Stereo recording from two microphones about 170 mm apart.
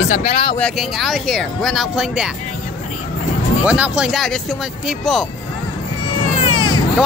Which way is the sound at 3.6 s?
5° right (ahead or behind).